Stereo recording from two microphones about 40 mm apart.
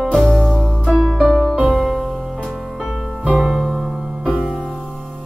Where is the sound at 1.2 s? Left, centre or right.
Centre.